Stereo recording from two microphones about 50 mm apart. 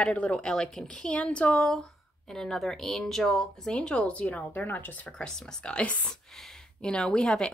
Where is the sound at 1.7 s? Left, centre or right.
Centre; by 5.1 s left.